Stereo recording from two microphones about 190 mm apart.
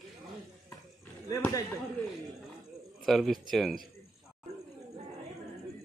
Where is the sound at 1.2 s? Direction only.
15° left (ahead or behind).